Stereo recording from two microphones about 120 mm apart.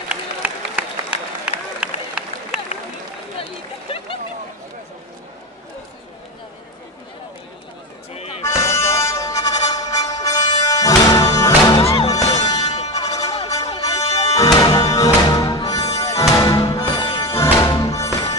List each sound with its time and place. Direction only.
0.1 s run: 10° right (ahead or behind)
8.1 s music: 60° left (ahead or behind)
8.5 s music: 25° left (ahead or behind)
11.7 s music: 50° left (ahead or behind)
12.1 s music: 30° left (ahead or behind)
12.6 s music: 65° left (ahead or behind)
13.0 s music: 30° left (ahead or behind)